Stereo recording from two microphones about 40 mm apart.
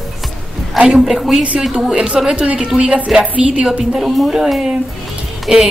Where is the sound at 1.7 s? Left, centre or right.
Right.